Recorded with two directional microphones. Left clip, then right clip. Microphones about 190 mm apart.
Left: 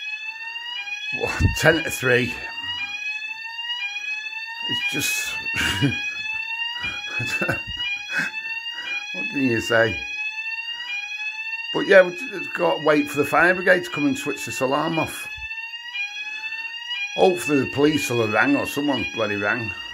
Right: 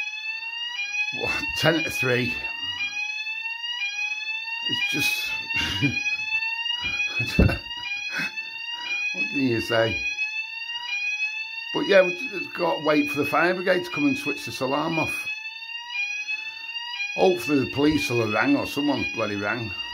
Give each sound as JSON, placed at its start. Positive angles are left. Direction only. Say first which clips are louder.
{"t": 1.2, "sound": "speech", "louder": "left 5 dB", "side_deg": 10}
{"t": 5.6, "sound": "speech", "louder": "left 2 dB", "side_deg": 20}
{"t": 7.2, "sound": "speech", "louder": "left 1 dB", "side_deg": 5}
{"t": 8.9, "sound": "speech", "louder": "right 2 dB", "side_deg": 0}
{"t": 11.7, "sound": "speech", "louder": "left 4 dB", "side_deg": 5}
{"t": 17.2, "sound": "speech", "louder": "left 3 dB", "side_deg": 0}